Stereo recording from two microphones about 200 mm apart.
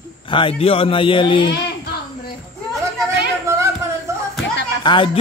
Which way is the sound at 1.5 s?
55° left (ahead or behind).